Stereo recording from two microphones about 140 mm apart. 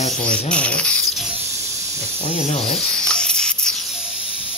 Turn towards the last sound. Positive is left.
turn(degrees=5)  # may be behind; listen again after turning